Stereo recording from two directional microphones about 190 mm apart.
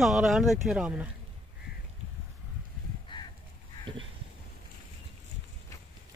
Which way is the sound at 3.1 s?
25° left (ahead or behind).